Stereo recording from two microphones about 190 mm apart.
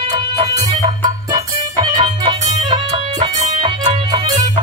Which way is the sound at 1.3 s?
25° right (ahead or behind).